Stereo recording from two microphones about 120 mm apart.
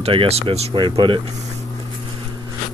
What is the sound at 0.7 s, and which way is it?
Speech, 40° right (ahead or behind).